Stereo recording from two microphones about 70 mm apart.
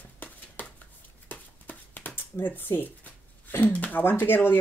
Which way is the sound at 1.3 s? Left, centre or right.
Left.